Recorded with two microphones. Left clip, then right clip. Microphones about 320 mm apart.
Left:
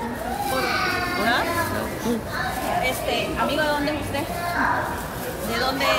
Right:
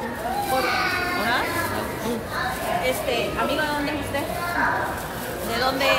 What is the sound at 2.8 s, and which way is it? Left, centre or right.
A woman's voice, centre.